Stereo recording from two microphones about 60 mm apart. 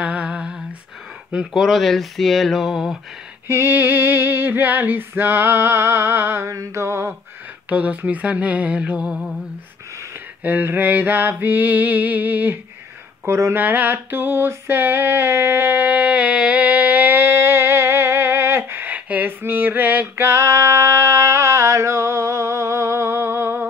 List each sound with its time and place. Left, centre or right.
0.0 s humming: right
1.5 s speech: centre
3.4 s female singing: right
6.5 s mantra: right
7.7 s a sound: right
10.4 s female singing: right
13.3 s mantra: right
13.6 s female singing: right
14.7 s a sound: right
20.2 s a sound: right